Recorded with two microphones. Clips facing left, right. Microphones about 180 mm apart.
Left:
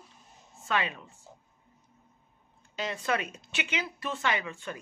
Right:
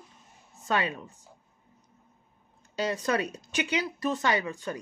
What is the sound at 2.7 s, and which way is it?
A woman's voice, 40° right (ahead or behind).